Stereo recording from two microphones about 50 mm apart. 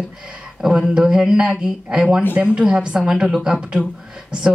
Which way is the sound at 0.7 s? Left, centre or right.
Centre.